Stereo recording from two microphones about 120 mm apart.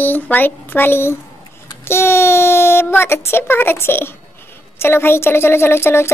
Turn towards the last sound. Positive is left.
turn(degrees=20)  # may be behind; listen again after turning